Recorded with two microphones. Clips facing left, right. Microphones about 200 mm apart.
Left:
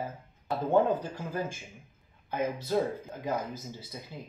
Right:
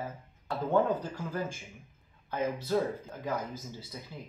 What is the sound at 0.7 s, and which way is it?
Speech, 20° left (ahead or behind).